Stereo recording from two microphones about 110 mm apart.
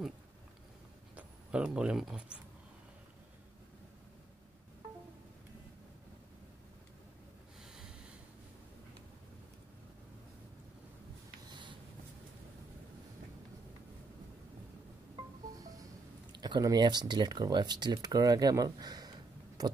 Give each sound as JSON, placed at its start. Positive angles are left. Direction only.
{"t": 1.1, "sound": "speech", "side_deg": -5}
{"t": 11.4, "sound": "writing", "side_deg": -45}
{"t": 15.5, "sound": "a sound", "side_deg": -35}